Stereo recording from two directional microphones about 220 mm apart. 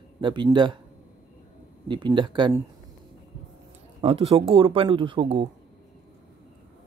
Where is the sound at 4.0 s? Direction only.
25° right (ahead or behind).